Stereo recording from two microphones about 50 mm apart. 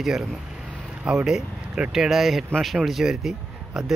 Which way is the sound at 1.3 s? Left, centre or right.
Centre.